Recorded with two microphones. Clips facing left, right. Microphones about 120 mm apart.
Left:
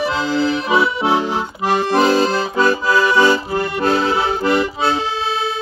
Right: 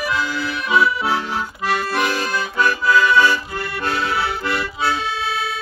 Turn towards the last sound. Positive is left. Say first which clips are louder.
# left 6 dB
turn(degrees=25)  # may be behind; listen again after turning